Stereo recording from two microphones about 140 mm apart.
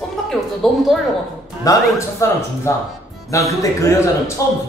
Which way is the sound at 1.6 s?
25° left (ahead or behind).